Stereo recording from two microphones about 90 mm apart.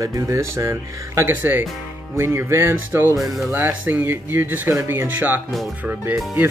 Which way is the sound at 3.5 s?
25° right (ahead or behind).